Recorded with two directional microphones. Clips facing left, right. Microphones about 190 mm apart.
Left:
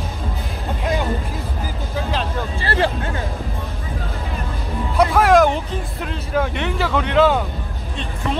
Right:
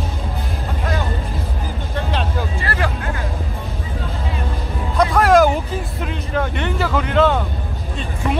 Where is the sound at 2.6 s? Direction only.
30° left (ahead or behind).